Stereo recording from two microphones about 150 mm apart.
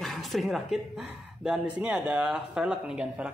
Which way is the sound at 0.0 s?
Centre (ahead or behind).